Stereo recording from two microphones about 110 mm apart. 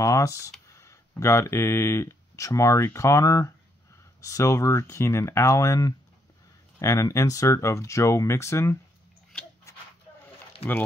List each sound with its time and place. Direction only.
0.0 s speech: 30° left (ahead or behind)
10.6 s speech: 65° left (ahead or behind)